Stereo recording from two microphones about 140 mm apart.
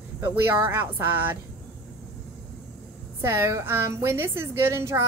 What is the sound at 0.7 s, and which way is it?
Speech, 15° right (ahead or behind).